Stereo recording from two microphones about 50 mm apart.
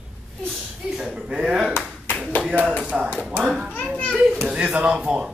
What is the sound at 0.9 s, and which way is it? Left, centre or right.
Slap, centre.